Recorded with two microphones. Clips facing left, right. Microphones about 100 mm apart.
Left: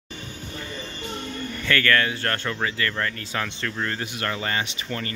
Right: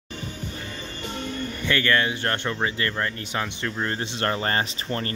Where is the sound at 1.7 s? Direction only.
20° right (ahead or behind).